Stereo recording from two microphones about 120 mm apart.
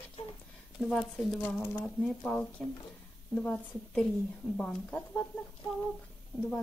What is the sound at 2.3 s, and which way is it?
Speech, centre (ahead or behind).